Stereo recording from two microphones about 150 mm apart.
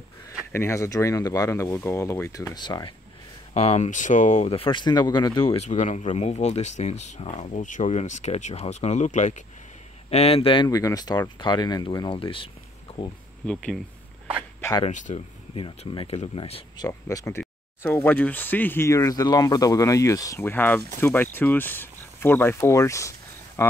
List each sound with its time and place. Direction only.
0.5 s speech: 15° left (ahead or behind)
3.5 s speech: 45° left (ahead or behind)
5.7 s speech: 55° left (ahead or behind)
10.0 s speech: 40° left (ahead or behind)
14.9 s speech: 55° left (ahead or behind); by 16.8 s 40° left (ahead or behind)
16.8 s speech: 25° left (ahead or behind)